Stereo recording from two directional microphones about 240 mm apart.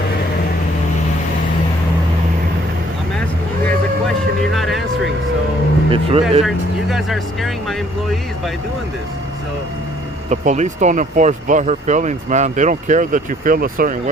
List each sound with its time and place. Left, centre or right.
4.6 s a sound: centre
5.9 s speech: right
6.4 s speech: centre
10.3 s speech: right